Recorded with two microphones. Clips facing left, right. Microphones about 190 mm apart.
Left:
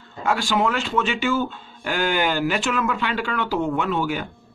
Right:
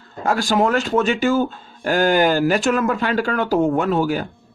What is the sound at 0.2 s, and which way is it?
Speech, 40° right (ahead or behind).